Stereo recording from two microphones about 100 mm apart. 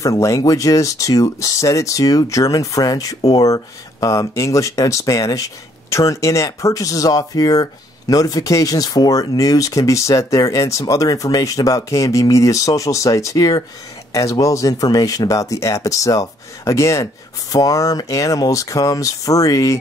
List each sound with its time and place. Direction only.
0.0 s speech: 35° left (ahead or behind)